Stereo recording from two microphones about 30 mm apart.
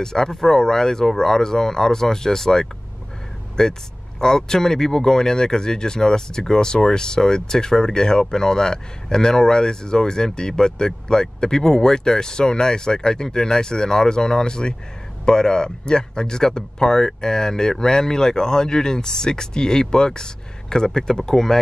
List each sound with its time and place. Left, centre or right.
0.0 s speech: centre